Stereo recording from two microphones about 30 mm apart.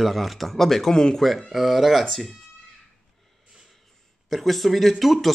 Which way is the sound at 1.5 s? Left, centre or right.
Centre.